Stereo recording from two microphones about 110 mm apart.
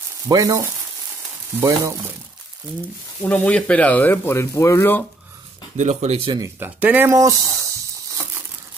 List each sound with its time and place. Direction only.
0.3 s frying: 30° right (ahead or behind)
1.6 s speech: 25° right (ahead or behind)
3.2 s speech: 10° left (ahead or behind)
5.8 s speech: 90° right
6.8 s speech: 20° right (ahead or behind)
7.2 s frying: 30° right (ahead or behind)